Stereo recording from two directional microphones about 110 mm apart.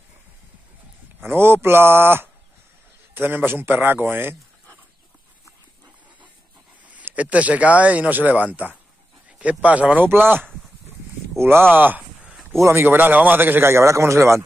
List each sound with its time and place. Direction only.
1.2 s a man's voice: 20° right (ahead or behind)
6.9 s speech: 15° right (ahead or behind)
11.7 s a sound: 15° right (ahead or behind)
12.6 s a man's voice: 20° right (ahead or behind)